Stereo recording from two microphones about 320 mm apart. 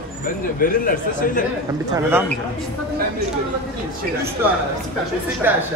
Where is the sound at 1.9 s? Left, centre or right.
Centre.